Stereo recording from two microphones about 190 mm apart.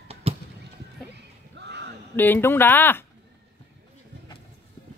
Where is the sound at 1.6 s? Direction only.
65° right (ahead or behind).